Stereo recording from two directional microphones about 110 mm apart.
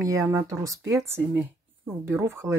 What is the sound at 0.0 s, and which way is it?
Speech, 30° right (ahead or behind).